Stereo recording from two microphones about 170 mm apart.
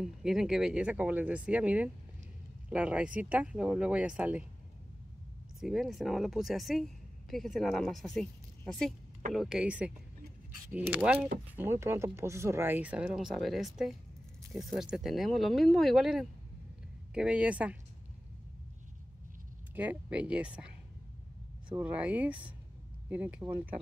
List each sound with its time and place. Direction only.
0.0 s speech: 5° right (ahead or behind)
5.6 s speech: centre (ahead or behind)
9.3 s speech: 5° right (ahead or behind)
19.7 s speech: 10° right (ahead or behind)